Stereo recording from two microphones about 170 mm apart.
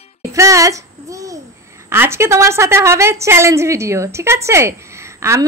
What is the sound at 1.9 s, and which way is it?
A woman's voice, 15° right (ahead or behind).